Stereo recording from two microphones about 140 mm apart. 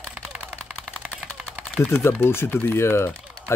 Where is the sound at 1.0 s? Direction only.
10° right (ahead or behind).